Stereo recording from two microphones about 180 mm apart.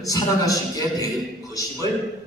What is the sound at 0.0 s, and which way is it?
Speech, 20° left (ahead or behind).